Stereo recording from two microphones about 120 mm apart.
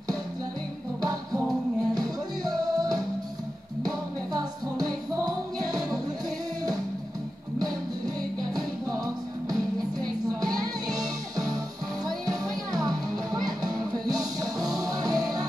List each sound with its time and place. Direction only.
2.0 s music: 30° right (ahead or behind)
8.5 s music: 30° right (ahead or behind)